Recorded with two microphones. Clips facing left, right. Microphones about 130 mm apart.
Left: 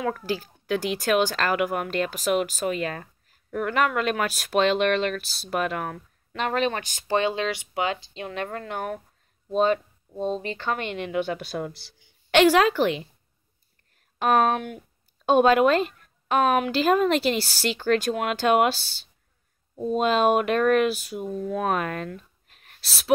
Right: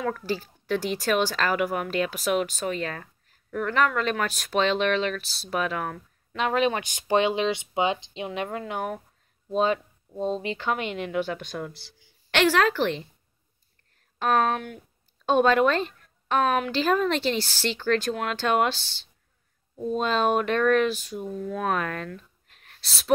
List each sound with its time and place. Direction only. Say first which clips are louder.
0.0 s speech: left 1 dB; 5° left (ahead or behind)
3.0 s a sound: left 2 dB; 25° left (ahead or behind)
3.6 s speech: even; 10° left (ahead or behind)
12.0 s a woman's voice: left 5 dB; 15° left (ahead or behind)
14.1 s a woman's voice: left 2 dB; 15° left (ahead or behind)
22.5 s a sound: even; 5° left (ahead or behind)